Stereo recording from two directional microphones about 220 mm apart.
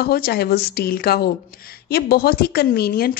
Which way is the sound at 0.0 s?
45° left (ahead or behind).